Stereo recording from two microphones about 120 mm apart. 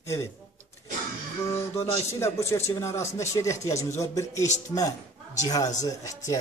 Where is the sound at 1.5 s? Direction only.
25° left (ahead or behind).